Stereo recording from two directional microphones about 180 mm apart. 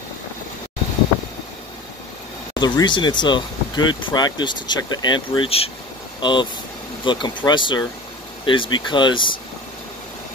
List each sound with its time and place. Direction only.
2.6 s speech: 25° left (ahead or behind)